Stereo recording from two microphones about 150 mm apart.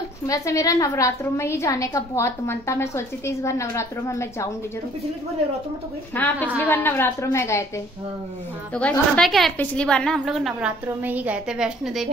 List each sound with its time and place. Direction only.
0.3 s a woman's voice: 20° left (ahead or behind)
6.1 s a woman's voice: 10° left (ahead or behind)
9.1 s a woman's voice: centre (ahead or behind)